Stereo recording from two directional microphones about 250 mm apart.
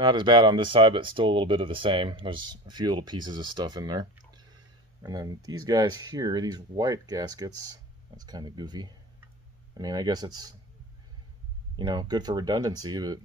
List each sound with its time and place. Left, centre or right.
0.0 s speech: centre
11.8 s speech: centre